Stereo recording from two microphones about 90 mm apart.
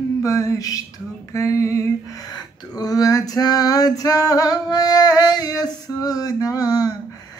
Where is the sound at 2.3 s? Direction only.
45° left (ahead or behind).